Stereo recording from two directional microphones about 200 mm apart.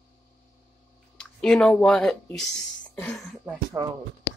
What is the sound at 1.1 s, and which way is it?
Speech, 5° left (ahead or behind).